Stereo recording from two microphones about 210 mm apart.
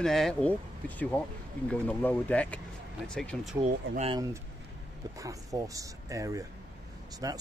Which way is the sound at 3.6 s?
30° right (ahead or behind).